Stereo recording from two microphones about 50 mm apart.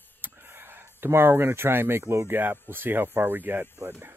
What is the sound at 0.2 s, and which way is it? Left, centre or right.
Speech, right.